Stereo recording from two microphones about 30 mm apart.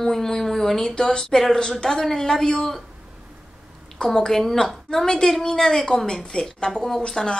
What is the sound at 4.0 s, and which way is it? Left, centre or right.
Speech, left.